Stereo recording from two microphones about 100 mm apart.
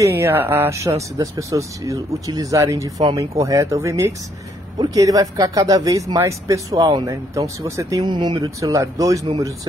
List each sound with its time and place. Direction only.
0.0 s speech: 25° right (ahead or behind)
8.0 s speech: 50° right (ahead or behind)
8.5 s speech: 35° right (ahead or behind)